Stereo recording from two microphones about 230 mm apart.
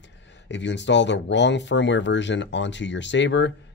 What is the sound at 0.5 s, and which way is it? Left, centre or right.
Speech, left.